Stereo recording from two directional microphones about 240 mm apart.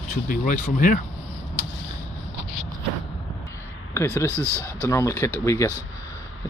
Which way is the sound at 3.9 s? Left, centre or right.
Centre.